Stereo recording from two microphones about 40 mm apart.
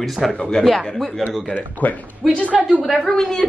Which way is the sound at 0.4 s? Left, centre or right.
Centre.